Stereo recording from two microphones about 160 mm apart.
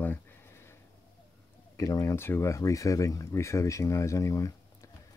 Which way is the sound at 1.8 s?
20° left (ahead or behind).